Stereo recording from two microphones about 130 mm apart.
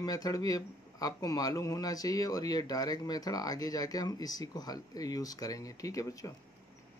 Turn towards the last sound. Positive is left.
turn(degrees=25)  # may be behind; listen again after turning